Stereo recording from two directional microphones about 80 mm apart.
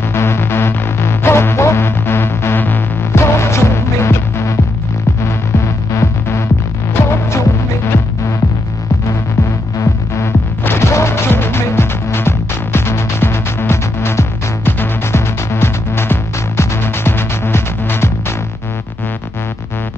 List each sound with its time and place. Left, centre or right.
0.1 s music: left
9.8 s music: left